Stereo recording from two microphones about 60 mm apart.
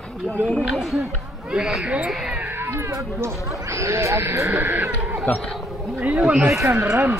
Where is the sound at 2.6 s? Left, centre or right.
Right.